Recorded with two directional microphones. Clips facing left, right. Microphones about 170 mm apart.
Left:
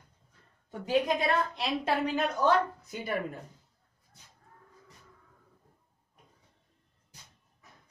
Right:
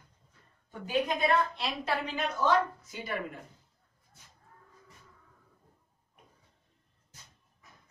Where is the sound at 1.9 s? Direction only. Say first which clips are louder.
Left 4 dB; 50° left (ahead or behind).